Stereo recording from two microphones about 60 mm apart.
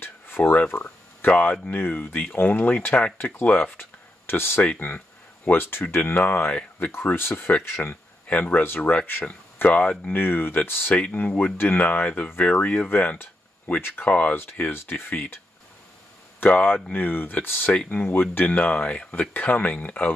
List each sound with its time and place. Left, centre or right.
0.4 s speech: left
4.3 s speech: left
4.6 s speech: left
8.3 s speech: left
8.6 s speech: left
9.6 s speech: left
11.8 s speech: left
13.2 s speech: left
14.0 s speech: left
14.7 s speech: left
16.4 s speech: left